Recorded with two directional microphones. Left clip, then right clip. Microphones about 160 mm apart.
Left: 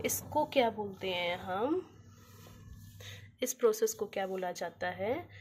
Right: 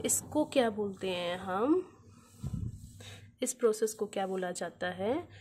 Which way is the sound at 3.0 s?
35° right (ahead or behind).